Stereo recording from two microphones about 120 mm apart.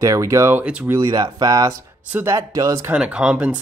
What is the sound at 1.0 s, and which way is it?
Speech, 35° right (ahead or behind).